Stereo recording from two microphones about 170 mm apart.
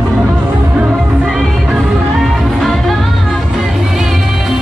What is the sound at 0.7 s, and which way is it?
Music, 5° right (ahead or behind).